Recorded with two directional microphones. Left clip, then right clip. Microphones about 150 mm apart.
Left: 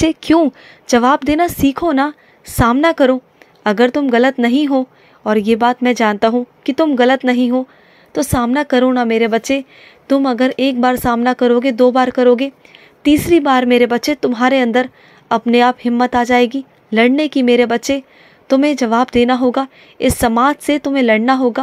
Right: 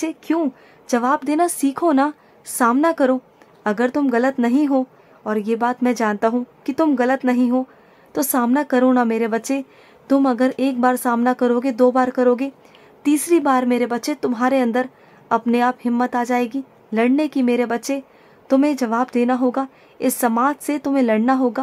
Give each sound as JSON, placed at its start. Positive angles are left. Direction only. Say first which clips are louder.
{"t": 0.3, "sound": "a woman's voice", "louder": "left 7 dB", "side_deg": 20}